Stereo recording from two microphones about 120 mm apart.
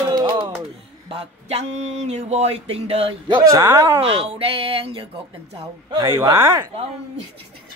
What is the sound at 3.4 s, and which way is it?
Speech, 25° right (ahead or behind).